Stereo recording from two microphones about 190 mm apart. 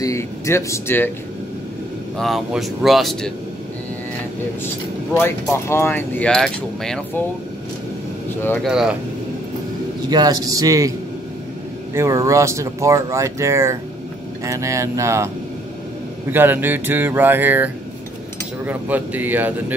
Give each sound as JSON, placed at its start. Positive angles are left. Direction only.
{"t": 0.0, "sound": "speech", "side_deg": 15}
{"t": 2.1, "sound": "speech", "side_deg": 0}
{"t": 5.1, "sound": "speech", "side_deg": 10}
{"t": 8.6, "sound": "speech", "side_deg": -5}
{"t": 10.0, "sound": "a man's voice", "side_deg": -20}
{"t": 11.9, "sound": "speech", "side_deg": -15}
{"t": 16.3, "sound": "speech", "side_deg": -10}
{"t": 18.7, "sound": "speech", "side_deg": -10}